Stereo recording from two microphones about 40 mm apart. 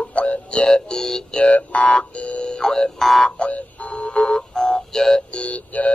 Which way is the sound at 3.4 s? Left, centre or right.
Left.